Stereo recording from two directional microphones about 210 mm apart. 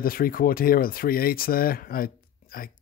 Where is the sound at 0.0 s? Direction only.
45° left (ahead or behind).